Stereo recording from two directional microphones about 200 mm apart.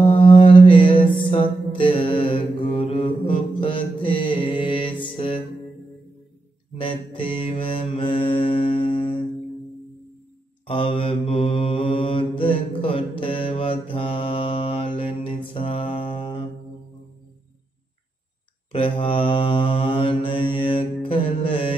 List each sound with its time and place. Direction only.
0.0 s music: 25° left (ahead or behind)
6.8 s mantra: 25° left (ahead or behind)
10.7 s mantra: 25° left (ahead or behind)
18.7 s mantra: 25° left (ahead or behind)